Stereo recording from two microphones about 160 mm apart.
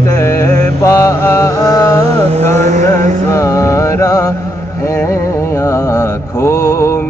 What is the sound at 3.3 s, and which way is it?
Mantra, 20° left (ahead or behind).